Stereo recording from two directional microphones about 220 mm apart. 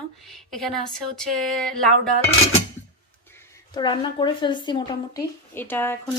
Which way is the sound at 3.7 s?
20° left (ahead or behind).